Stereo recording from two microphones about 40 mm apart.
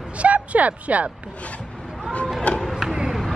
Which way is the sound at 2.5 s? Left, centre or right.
Left.